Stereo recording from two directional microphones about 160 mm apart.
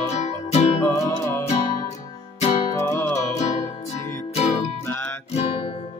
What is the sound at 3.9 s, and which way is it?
Music, 15° left (ahead or behind).